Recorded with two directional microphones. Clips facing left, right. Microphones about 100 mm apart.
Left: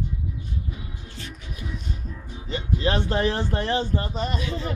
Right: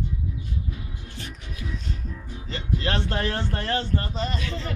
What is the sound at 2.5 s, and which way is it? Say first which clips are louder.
Speech: left 3 dB; 15° left (ahead or behind).